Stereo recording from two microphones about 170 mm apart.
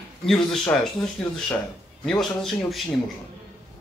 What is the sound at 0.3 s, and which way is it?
Speech, centre (ahead or behind).